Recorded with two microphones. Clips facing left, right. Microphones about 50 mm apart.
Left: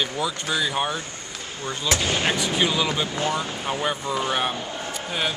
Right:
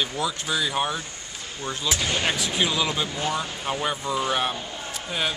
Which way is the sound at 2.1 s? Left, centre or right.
Centre.